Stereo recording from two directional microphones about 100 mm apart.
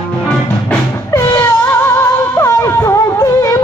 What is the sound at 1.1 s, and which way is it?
Music, 30° left (ahead or behind).